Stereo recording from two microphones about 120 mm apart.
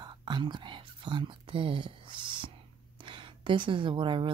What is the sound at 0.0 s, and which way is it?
Speech, 40° right (ahead or behind).